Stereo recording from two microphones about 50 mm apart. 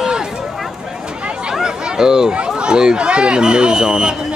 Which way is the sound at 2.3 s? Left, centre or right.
Right.